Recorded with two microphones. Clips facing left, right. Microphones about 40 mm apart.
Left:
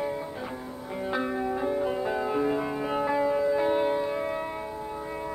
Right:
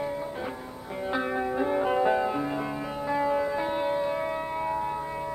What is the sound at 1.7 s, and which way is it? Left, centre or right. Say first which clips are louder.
Music: right 4 dB; right.